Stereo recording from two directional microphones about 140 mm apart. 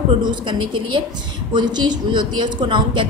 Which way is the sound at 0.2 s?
35° right (ahead or behind).